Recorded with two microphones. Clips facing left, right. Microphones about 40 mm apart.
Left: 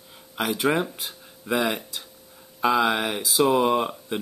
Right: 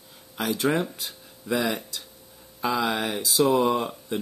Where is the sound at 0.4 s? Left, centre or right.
Left.